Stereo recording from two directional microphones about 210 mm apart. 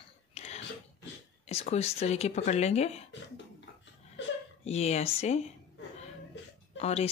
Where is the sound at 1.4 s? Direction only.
30° left (ahead or behind).